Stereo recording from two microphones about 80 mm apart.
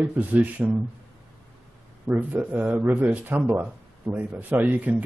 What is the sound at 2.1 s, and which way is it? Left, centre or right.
A man's voice, centre.